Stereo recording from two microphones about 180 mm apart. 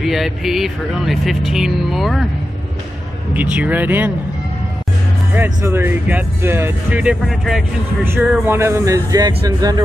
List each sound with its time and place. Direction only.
0.0 s speech: centre (ahead or behind)
3.3 s speech: 10° right (ahead or behind)
5.3 s speech: 10° right (ahead or behind)